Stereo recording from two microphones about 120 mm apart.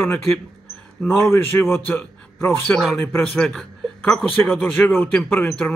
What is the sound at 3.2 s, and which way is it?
A man's voice, 5° left (ahead or behind).